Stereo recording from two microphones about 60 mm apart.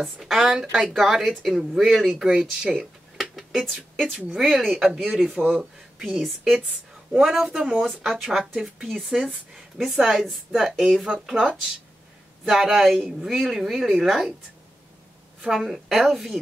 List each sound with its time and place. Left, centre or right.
0.0 s a woman's voice: centre
2.7 s a sound: centre
3.6 s a woman's voice: centre
5.9 s a woman's voice: centre
12.4 s speech: centre
15.4 s a woman's voice: centre